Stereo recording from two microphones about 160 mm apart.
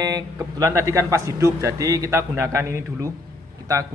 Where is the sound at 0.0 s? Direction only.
20° right (ahead or behind).